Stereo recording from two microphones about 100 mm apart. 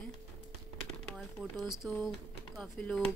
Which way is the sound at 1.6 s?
5° right (ahead or behind).